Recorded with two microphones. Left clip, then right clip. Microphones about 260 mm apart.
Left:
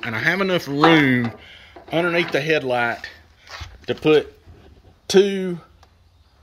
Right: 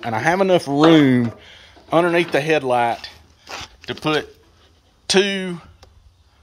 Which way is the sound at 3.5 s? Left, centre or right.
Right.